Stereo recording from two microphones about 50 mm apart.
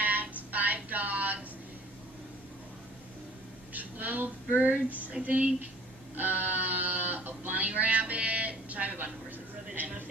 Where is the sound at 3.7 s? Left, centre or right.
Right.